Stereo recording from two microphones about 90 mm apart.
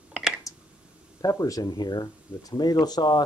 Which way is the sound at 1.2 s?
45° left (ahead or behind).